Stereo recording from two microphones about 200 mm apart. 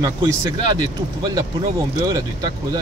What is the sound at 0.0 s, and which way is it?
A man's voice, 20° right (ahead or behind).